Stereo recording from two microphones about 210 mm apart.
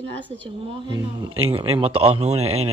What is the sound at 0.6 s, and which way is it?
Speech, 20° right (ahead or behind).